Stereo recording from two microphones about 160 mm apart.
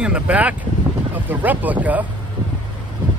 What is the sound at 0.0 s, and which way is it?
Speech, 10° right (ahead or behind).